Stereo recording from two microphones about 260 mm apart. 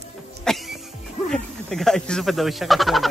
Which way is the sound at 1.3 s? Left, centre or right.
Centre.